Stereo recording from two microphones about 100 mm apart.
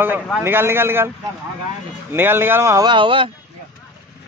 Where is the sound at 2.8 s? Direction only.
55° right (ahead or behind).